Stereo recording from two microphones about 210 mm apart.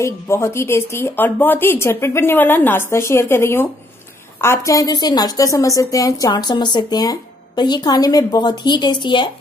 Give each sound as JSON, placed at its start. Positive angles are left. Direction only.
{"t": 0.0, "sound": "a woman's voice", "side_deg": 15}